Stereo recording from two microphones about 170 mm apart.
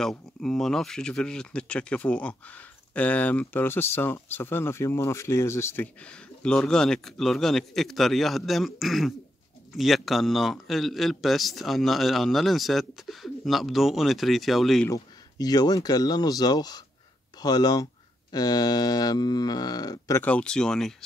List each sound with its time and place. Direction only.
0.4 s a man's voice: 5° left (ahead or behind)
14.9 s speech: 20° left (ahead or behind)
20.2 s a man's voice: 5° left (ahead or behind)